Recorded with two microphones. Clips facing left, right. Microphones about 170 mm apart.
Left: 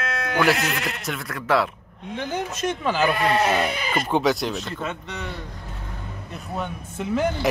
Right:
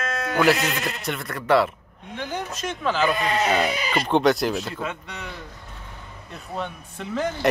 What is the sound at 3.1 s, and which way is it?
Speech, 60° left (ahead or behind).